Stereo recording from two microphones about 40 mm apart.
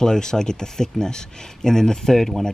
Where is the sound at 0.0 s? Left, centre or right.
Centre.